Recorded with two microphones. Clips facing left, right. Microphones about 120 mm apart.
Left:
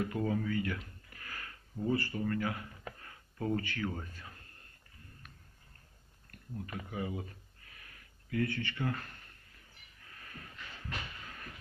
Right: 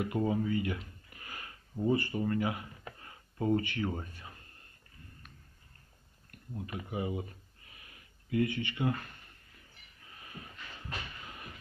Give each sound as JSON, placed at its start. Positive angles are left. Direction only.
{"t": 0.0, "sound": "speech", "side_deg": -15}
{"t": 6.5, "sound": "speech", "side_deg": -15}
{"t": 10.1, "sound": "a sound", "side_deg": -15}